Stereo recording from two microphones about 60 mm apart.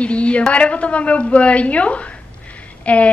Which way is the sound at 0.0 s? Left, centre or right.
Centre.